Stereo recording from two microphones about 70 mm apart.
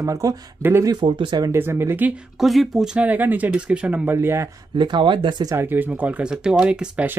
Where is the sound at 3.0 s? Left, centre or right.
Right.